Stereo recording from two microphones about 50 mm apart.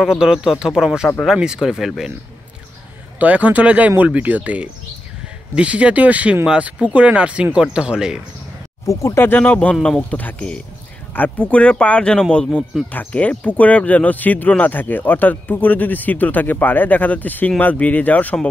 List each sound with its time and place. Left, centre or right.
0.0 s speech: centre
3.2 s a man's voice: right
8.8 s speech: left
9.5 s speech: left
12.9 s speech: left